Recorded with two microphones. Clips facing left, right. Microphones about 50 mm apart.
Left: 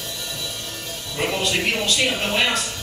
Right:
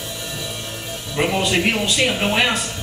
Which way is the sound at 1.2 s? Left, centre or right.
Centre.